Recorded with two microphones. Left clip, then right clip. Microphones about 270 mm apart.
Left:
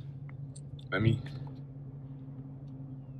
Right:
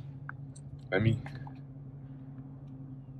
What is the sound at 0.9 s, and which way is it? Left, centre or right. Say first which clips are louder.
Speech: right 1 dB; centre.